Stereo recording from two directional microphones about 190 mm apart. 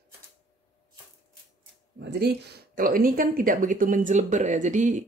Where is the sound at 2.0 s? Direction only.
60° right (ahead or behind).